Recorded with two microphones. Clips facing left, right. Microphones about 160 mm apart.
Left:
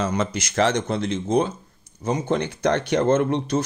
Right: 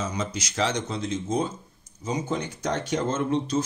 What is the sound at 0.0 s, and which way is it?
Speech, 60° left (ahead or behind).